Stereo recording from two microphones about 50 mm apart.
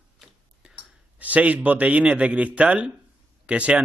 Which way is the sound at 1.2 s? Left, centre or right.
Right.